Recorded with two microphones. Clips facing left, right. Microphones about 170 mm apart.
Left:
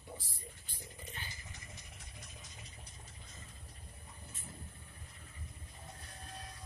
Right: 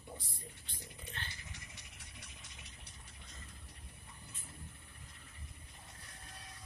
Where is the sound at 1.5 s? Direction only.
70° right (ahead or behind).